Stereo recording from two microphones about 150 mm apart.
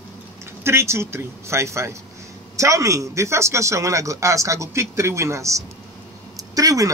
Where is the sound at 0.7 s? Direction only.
15° right (ahead or behind).